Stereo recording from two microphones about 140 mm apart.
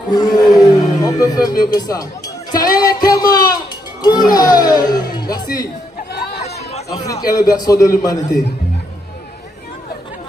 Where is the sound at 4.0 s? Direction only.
30° left (ahead or behind).